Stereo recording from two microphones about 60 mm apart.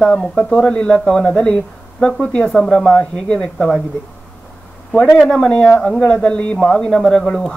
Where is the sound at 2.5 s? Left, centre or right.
Centre.